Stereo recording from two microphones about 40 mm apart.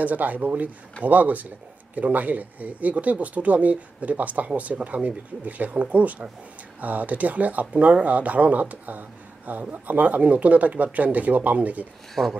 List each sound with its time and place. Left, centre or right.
0.0 s speech: right
12.2 s speech: right